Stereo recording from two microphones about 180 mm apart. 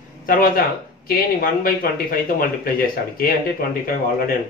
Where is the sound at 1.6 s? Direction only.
55° left (ahead or behind).